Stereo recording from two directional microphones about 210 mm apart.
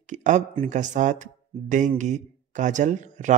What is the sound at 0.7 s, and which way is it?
A man's voice, 35° right (ahead or behind).